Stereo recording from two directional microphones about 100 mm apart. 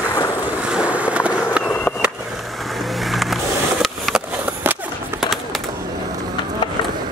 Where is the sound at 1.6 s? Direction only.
15° left (ahead or behind).